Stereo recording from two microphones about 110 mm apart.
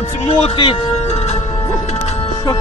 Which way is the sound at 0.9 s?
80° left.